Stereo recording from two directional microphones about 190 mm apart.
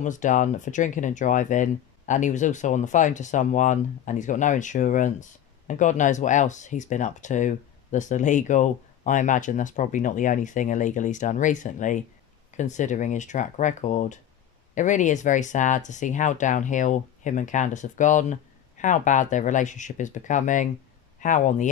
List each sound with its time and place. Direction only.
0.0 s speech: 40° left (ahead or behind)